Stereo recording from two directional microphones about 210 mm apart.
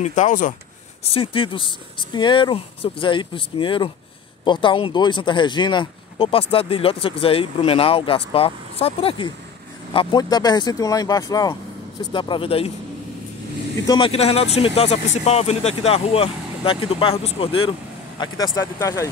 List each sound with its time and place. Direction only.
0.0 s speech: 35° left (ahead or behind)
1.0 s speech: 25° left (ahead or behind)
13.8 s speech: 25° left (ahead or behind)
18.4 s speech: 15° left (ahead or behind)